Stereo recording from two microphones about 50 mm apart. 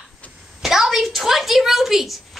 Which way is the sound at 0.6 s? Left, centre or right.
Centre.